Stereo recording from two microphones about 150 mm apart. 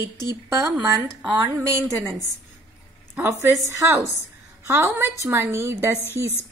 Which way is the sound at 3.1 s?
15° right (ahead or behind).